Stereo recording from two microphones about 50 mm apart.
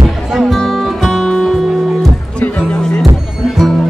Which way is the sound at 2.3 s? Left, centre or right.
Left.